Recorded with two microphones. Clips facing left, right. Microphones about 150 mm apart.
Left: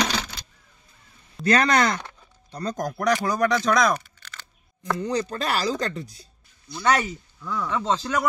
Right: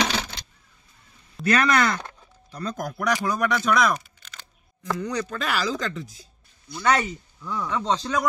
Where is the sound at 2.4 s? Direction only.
35° left (ahead or behind).